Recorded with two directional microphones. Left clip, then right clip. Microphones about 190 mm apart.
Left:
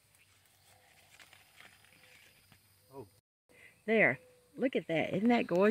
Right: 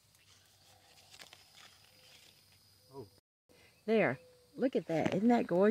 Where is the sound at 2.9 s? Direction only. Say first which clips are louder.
Even; 40° left (ahead or behind).